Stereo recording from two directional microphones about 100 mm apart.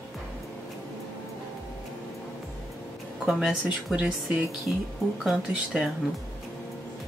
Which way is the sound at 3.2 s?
5° right (ahead or behind).